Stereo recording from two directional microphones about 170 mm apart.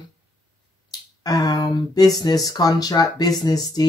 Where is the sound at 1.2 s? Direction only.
20° left (ahead or behind).